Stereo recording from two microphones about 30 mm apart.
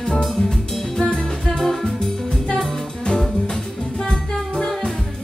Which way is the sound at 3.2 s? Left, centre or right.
Centre.